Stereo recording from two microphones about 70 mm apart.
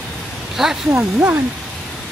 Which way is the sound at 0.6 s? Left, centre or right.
Centre.